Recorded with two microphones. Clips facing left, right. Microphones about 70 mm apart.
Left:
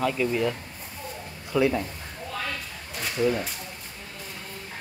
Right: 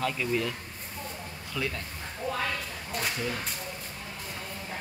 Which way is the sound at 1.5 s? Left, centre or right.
Left.